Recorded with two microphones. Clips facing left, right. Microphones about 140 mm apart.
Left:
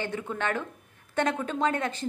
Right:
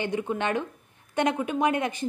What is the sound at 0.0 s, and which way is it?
A woman's voice, 15° right (ahead or behind).